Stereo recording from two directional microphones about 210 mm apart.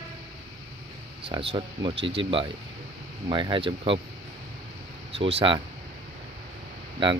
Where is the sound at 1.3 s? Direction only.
25° right (ahead or behind).